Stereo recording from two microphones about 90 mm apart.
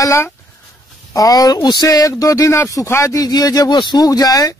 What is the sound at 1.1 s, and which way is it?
Speech, 40° left (ahead or behind).